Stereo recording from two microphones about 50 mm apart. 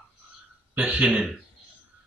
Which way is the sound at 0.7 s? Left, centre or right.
Right.